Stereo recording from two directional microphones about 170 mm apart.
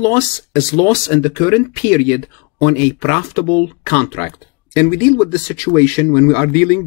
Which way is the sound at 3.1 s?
10° left (ahead or behind).